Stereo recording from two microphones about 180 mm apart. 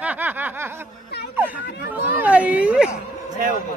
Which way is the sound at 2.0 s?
10° right (ahead or behind).